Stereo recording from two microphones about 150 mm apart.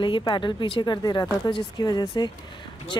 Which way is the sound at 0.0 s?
30° left (ahead or behind).